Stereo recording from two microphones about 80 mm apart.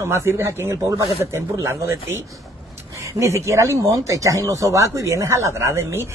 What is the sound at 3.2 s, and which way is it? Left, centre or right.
Speech, right.